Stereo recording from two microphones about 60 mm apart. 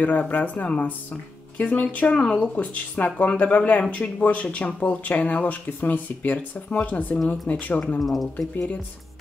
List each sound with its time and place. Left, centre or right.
0.2 s speech: left
8.0 s speech: centre